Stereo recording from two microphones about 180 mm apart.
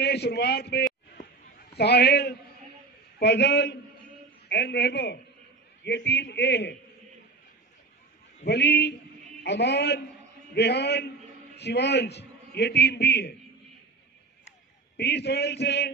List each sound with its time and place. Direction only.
0.0 s a man's voice: 65° left (ahead or behind)
8.5 s a man's voice: 70° left (ahead or behind)
15.0 s a man's voice: 65° left (ahead or behind)